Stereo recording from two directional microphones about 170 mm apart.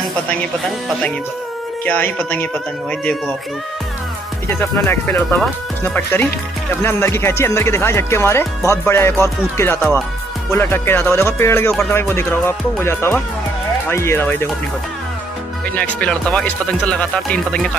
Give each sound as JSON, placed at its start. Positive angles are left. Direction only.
{"t": 1.9, "sound": "speech", "side_deg": 10}
{"t": 4.5, "sound": "speech", "side_deg": 15}
{"t": 15.7, "sound": "speech", "side_deg": 10}